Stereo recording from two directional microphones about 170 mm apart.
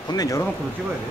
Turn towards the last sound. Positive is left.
turn(degrees=20)  # may be behind; listen again after turning